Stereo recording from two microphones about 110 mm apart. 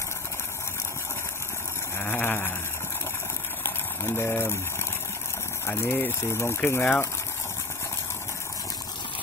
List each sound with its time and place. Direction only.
2.0 s a sound: 20° left (ahead or behind)
3.6 s boiling: 20° left (ahead or behind)
5.7 s speech: 20° left (ahead or behind)